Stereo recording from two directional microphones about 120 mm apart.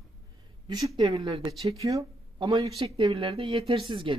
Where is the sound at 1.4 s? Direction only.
30° right (ahead or behind).